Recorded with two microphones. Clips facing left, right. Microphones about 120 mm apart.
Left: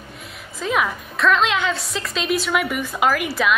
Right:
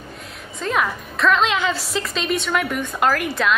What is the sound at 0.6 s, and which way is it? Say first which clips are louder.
A woman's voice: even; centre (ahead or behind).